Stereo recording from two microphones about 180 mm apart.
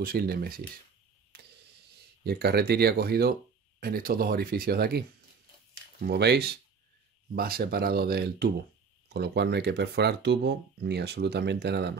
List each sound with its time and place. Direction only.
0.0 s speech: 55° right (ahead or behind)
2.0 s speech: 60° right (ahead or behind)
6.0 s speech: 65° right (ahead or behind)